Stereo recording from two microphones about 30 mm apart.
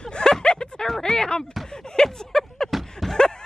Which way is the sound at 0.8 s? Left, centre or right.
Centre.